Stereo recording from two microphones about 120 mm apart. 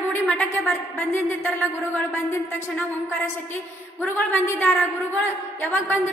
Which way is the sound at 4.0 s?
15° left (ahead or behind).